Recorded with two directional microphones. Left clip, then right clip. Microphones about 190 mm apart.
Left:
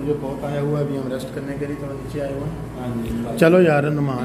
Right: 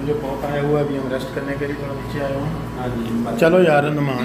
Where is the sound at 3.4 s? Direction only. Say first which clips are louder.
Right 1 dB; 40° left (ahead or behind).